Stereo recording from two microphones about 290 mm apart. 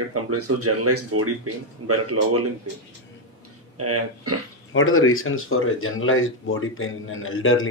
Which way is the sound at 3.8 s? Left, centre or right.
Right.